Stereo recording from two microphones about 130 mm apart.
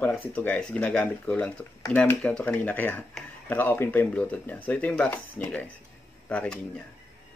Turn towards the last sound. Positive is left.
turn(degrees=10)  # may be behind; listen again after turning